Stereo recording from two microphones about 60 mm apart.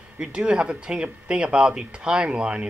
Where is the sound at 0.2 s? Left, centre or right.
Centre.